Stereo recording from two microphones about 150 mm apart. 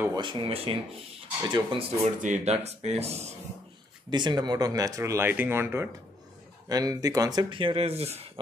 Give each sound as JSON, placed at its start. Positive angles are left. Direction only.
{"t": 0.1, "sound": "speech", "side_deg": -35}
{"t": 2.2, "sound": "speech", "side_deg": -50}
{"t": 4.1, "sound": "speech", "side_deg": -30}